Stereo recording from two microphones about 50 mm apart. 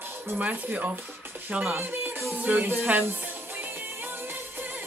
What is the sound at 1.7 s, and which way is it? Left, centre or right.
Music, right.